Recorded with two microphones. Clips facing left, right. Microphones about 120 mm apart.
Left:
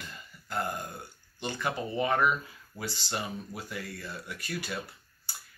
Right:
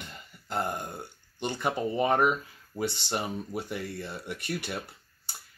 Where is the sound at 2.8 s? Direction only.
65° right (ahead or behind).